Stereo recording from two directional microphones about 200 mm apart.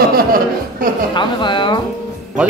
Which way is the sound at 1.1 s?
25° left (ahead or behind).